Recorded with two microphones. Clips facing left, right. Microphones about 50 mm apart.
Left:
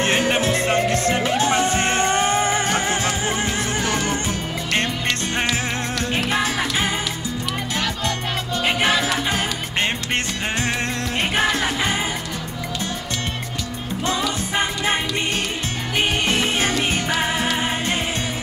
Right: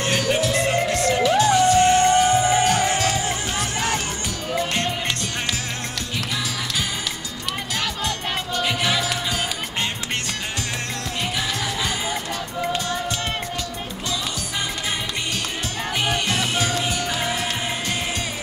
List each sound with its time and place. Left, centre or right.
0.0 s music: left
6.1 s music: left
8.6 s music: left
11.1 s music: left
14.5 s music: left
16.0 s music: left